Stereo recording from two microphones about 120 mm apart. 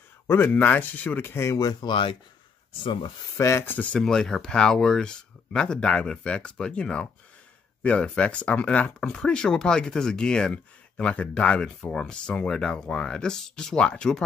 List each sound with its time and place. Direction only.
0.3 s speech: 15° left (ahead or behind); by 3.1 s 45° left (ahead or behind)
3.3 s speech: 25° left (ahead or behind); by 14.2 s 5° left (ahead or behind)